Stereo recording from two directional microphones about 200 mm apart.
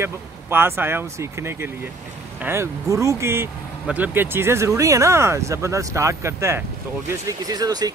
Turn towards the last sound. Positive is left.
turn(degrees=-20)  # may be behind; listen again after turning